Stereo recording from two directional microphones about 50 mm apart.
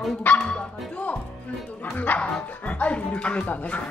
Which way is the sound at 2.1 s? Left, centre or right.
Left.